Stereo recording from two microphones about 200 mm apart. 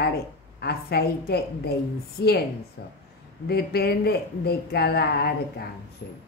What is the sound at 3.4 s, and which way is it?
A woman's voice, 50° left (ahead or behind).